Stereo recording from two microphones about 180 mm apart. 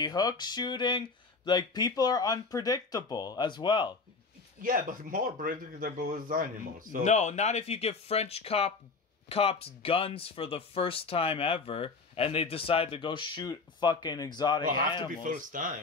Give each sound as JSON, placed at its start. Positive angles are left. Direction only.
{"t": 0.0, "sound": "speech", "side_deg": 20}
{"t": 4.6, "sound": "speech", "side_deg": -50}
{"t": 7.1, "sound": "speech", "side_deg": 40}
{"t": 15.2, "sound": "speech", "side_deg": -45}